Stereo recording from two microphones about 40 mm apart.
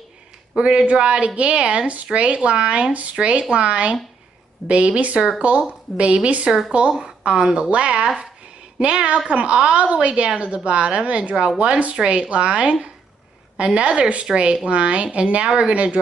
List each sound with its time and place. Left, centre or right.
0.6 s a woman's voice: right